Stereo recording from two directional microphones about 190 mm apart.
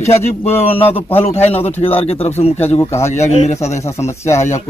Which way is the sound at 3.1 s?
35° left (ahead or behind).